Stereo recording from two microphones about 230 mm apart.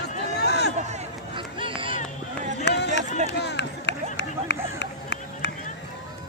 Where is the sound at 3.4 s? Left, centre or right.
Left.